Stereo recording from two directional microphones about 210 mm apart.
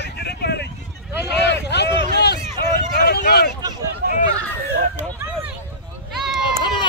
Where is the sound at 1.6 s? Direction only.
50° left (ahead or behind).